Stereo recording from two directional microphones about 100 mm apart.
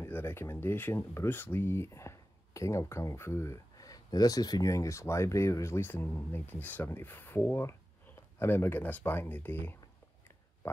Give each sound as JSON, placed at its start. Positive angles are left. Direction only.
{"t": 0.0, "sound": "speech", "side_deg": 20}